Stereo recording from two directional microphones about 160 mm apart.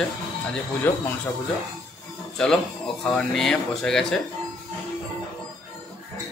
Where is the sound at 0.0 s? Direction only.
5° left (ahead or behind).